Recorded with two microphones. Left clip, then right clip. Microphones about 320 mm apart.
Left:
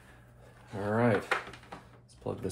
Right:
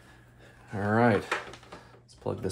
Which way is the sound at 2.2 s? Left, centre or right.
Right.